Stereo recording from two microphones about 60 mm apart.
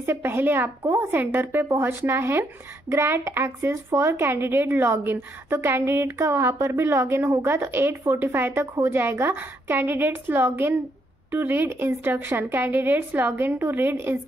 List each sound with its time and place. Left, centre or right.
0.0 s a woman's voice: right